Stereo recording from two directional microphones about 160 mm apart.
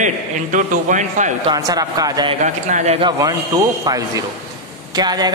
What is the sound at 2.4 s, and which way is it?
Speech, 50° right (ahead or behind).